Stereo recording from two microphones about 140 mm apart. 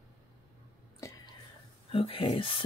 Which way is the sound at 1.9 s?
40° left (ahead or behind).